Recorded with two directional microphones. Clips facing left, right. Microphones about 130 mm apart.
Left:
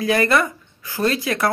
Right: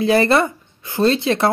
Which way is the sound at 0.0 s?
30° right (ahead or behind).